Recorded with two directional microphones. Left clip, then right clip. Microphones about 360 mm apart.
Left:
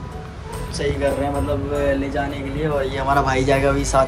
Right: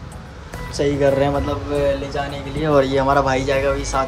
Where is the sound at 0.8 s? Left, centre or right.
Centre.